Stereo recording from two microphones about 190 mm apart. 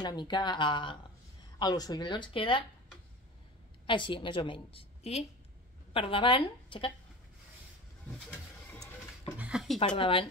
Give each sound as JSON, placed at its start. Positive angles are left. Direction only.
{"t": 0.0, "sound": "speech", "side_deg": 25}
{"t": 3.8, "sound": "a woman's voice", "side_deg": 25}
{"t": 9.4, "sound": "a sound", "side_deg": -5}
{"t": 9.9, "sound": "speech", "side_deg": 25}